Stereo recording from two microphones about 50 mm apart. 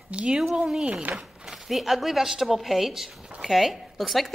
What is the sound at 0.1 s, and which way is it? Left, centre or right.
Speech, right.